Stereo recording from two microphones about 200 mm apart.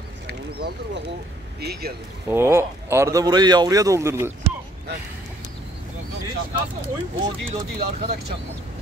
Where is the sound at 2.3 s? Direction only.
10° right (ahead or behind).